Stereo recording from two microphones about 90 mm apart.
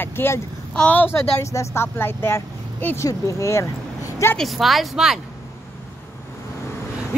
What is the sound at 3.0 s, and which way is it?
Speech, 35° left (ahead or behind).